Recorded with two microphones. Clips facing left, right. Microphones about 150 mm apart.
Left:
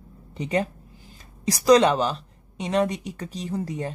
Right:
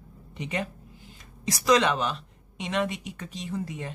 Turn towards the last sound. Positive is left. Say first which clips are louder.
# left 4 dB
turn(degrees=35)  # may be behind; listen again after turning